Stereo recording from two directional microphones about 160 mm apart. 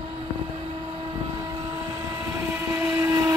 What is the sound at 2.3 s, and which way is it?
Train, 15° right (ahead or behind).